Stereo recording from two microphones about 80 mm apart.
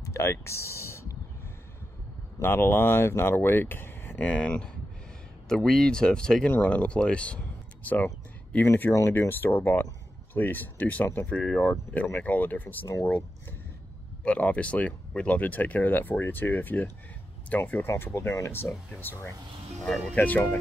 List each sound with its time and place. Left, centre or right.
0.0 s a sound: left
2.4 s speech: left
4.2 s speech: centre
17.8 s speech: left
20.2 s speech: left